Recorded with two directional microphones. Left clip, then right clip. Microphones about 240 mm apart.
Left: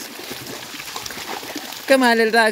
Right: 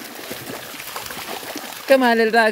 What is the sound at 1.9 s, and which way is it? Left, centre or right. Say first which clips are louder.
Speech: even; centre.